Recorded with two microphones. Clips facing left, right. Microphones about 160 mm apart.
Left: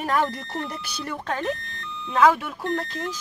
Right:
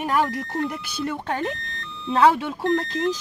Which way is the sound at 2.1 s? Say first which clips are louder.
Right 1 dB; 30° right (ahead or behind).